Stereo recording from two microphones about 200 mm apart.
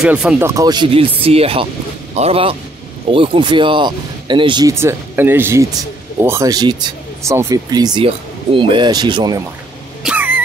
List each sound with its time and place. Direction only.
0.0 s speech: 5° right (ahead or behind)
0.6 s speech: 20° right (ahead or behind)
10.0 s cough: 10° right (ahead or behind)